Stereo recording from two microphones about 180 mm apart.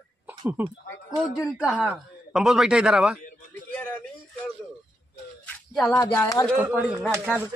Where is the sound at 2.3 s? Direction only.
5° right (ahead or behind).